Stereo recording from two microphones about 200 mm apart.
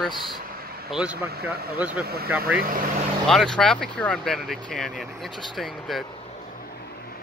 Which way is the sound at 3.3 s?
5° left (ahead or behind).